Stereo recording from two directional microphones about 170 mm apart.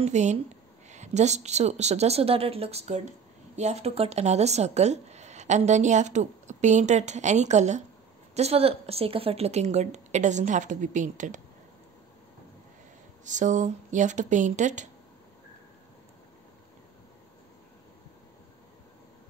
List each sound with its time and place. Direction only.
0.0 s speech: 45° right (ahead or behind)
13.2 s speech: 45° right (ahead or behind)